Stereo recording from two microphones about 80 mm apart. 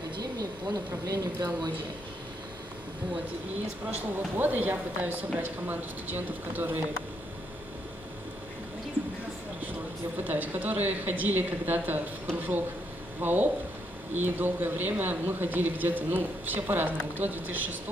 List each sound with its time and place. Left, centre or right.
0.2 s speech: right
3.9 s speech: right
10.2 s speech: right